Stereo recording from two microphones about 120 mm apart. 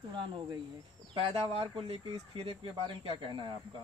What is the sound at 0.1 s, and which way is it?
Speech, 40° right (ahead or behind).